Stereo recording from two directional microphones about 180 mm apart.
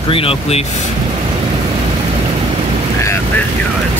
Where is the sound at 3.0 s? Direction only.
15° left (ahead or behind).